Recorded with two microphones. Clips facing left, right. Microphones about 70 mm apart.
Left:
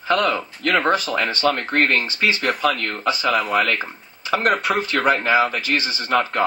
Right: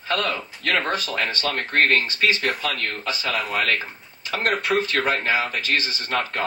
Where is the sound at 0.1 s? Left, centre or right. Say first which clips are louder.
Left 5 dB; left.